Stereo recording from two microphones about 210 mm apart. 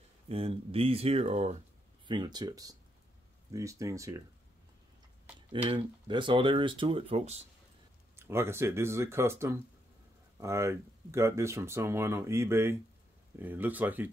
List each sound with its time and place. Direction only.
0.3 s speech: 25° right (ahead or behind)
2.0 s speech: 20° right (ahead or behind)
5.7 s speech: 25° right (ahead or behind)
8.2 s speech: 10° right (ahead or behind)